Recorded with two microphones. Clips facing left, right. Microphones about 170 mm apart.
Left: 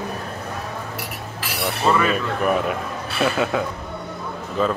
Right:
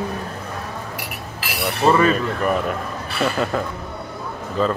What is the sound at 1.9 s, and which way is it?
Speech, 35° right (ahead or behind).